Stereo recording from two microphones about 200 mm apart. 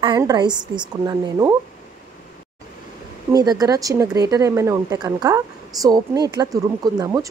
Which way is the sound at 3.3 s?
20° right (ahead or behind).